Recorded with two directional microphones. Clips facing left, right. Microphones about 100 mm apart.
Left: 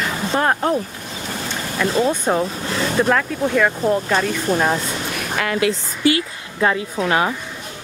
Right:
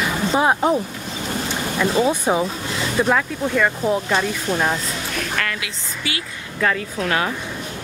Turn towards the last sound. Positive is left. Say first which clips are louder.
# left 3 dB
turn(degrees=25)  # may be behind; listen again after turning